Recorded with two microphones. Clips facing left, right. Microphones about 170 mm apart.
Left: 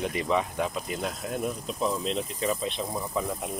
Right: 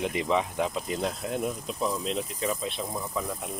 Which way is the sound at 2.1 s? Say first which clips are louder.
Left 1 dB; 5° right (ahead or behind).